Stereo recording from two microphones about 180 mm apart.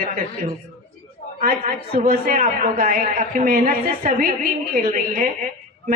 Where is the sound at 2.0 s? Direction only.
45° right (ahead or behind).